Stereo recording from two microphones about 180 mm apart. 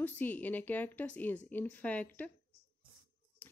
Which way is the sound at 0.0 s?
10° left (ahead or behind).